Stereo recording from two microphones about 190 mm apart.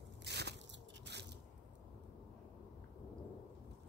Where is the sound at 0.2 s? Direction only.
60° right (ahead or behind).